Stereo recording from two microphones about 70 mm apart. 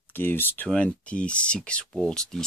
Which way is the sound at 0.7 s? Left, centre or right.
Centre.